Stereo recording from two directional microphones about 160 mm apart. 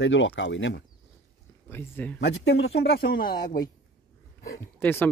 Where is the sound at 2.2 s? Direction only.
90° left; by 3.3 s 75° left (ahead or behind).